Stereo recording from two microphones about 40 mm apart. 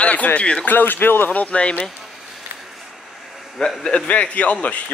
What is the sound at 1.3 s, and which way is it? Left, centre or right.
Speech, left.